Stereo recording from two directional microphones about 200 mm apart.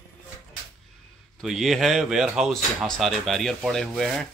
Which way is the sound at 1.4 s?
Centre (ahead or behind).